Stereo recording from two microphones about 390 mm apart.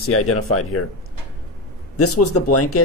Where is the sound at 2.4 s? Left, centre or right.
Left.